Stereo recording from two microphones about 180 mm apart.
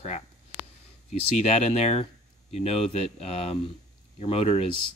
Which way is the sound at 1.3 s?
40° left (ahead or behind).